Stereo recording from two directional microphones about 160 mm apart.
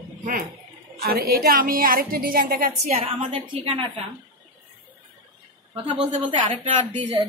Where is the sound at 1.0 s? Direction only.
70° right (ahead or behind).